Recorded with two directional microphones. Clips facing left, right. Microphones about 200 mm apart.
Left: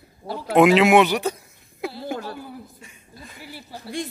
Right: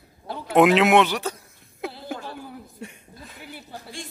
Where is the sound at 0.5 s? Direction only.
Centre (ahead or behind).